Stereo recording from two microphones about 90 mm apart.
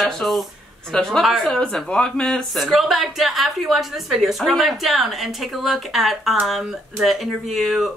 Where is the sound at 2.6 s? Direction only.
5° right (ahead or behind).